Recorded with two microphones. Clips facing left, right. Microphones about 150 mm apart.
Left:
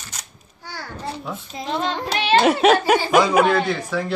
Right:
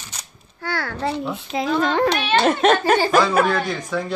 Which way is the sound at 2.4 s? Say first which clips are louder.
Left 1 dB; 5° left (ahead or behind).